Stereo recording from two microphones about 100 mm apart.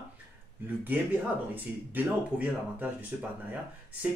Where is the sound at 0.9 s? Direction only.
20° right (ahead or behind).